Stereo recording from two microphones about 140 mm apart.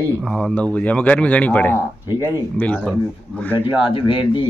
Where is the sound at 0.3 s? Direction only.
5° left (ahead or behind).